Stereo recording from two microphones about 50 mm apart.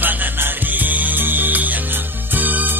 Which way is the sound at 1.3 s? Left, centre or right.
Right.